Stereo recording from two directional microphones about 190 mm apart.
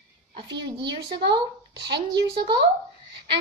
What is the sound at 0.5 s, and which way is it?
Speech, 65° right (ahead or behind).